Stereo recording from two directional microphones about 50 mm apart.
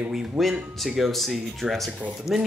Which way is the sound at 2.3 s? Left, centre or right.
Left.